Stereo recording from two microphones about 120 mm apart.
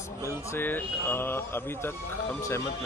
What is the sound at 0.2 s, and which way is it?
Speech, 20° left (ahead or behind).